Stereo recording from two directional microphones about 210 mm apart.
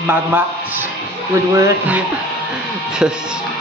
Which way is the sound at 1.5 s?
15° right (ahead or behind).